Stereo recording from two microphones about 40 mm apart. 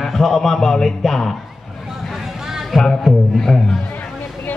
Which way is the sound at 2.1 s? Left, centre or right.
Centre.